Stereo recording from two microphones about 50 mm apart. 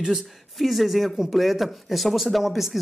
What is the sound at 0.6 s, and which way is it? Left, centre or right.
Speech, centre.